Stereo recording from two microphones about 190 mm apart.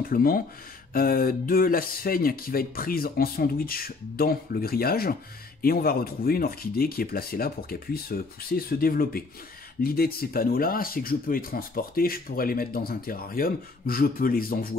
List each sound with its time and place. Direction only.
0.0 s speech: 50° left (ahead or behind)